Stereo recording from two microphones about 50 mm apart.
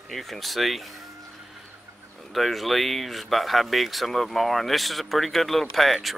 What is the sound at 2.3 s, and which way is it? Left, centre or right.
Speech, centre.